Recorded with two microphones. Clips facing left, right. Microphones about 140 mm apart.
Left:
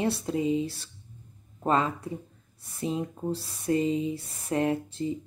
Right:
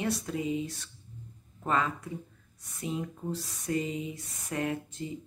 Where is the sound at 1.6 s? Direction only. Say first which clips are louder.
Left 4 dB; 30° left (ahead or behind).